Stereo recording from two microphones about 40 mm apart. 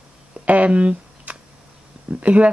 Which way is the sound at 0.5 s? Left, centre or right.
Right.